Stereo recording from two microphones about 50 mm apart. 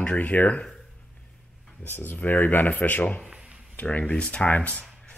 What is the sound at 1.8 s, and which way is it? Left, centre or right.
Speech, left.